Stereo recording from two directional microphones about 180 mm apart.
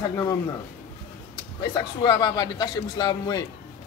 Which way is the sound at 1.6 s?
20° left (ahead or behind).